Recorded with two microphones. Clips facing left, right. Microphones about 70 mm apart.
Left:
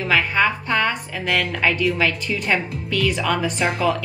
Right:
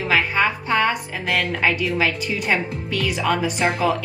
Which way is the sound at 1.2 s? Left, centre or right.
Centre.